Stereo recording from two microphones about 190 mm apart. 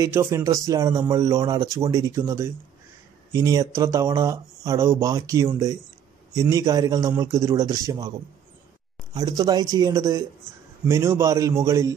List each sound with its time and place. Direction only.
0.0 s a man's voice: 15° right (ahead or behind)
9.1 s a man's voice: 20° right (ahead or behind)